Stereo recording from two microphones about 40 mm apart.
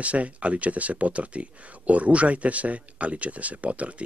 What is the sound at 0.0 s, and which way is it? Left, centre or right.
Speech, right.